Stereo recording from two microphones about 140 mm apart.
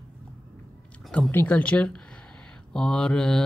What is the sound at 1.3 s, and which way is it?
Speech, 10° left (ahead or behind).